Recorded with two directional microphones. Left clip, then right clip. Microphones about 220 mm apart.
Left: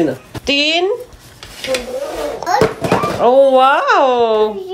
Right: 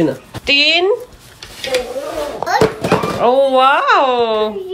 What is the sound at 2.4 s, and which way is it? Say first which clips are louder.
A child's voice: even; 5° left (ahead or behind).